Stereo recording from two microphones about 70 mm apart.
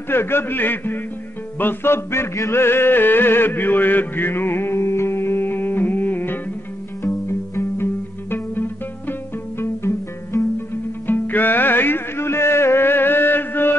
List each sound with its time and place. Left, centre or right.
0.1 s a man's voice: left
1.6 s music: left
7.0 s music: left
9.6 s music: left
11.1 s music: left